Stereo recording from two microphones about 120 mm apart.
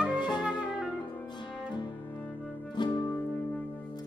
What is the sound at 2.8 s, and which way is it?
Music, 40° left (ahead or behind).